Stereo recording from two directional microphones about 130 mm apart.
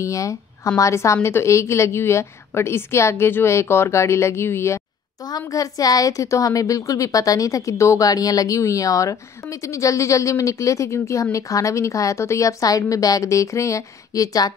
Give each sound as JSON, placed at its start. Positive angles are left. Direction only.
{"t": 0.0, "sound": "a woman's voice", "side_deg": 25}